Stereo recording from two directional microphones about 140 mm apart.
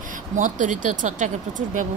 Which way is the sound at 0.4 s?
65° right (ahead or behind).